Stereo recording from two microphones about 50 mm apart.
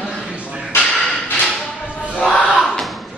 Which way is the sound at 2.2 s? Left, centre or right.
Centre.